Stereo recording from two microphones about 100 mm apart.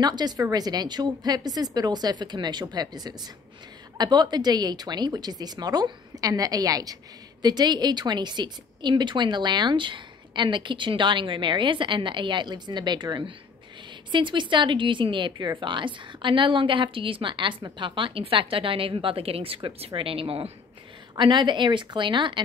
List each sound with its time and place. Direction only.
0.0 s a woman's voice: 45° right (ahead or behind); by 20.5 s 70° right (ahead or behind)
21.2 s a woman's voice: 50° right (ahead or behind)